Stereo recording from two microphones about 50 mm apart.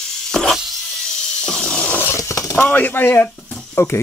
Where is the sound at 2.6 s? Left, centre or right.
Left.